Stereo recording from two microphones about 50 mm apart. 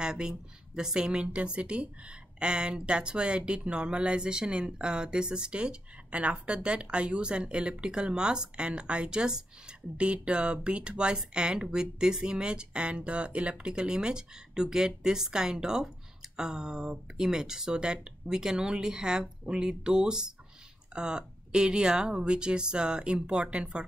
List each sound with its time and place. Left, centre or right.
0.0 s speech: centre